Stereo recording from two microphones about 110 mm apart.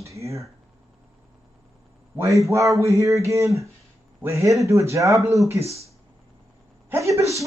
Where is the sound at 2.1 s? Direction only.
25° right (ahead or behind).